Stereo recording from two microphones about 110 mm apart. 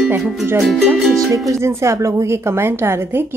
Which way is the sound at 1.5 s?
25° right (ahead or behind).